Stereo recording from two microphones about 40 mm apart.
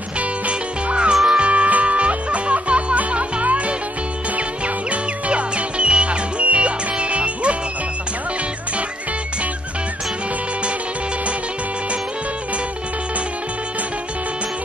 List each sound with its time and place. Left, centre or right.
0.5 s music: right
5.3 s music: right